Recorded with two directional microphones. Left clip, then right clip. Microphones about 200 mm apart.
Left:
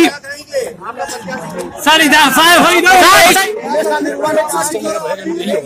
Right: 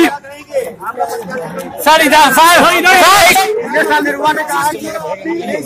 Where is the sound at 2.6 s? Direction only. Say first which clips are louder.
Even; 25° left (ahead or behind).